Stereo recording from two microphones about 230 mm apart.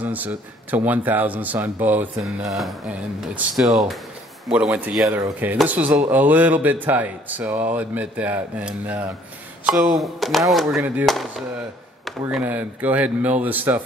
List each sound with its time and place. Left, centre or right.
0.0 s speech: centre